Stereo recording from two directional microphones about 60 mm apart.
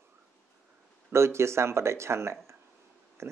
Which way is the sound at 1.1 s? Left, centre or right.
Right.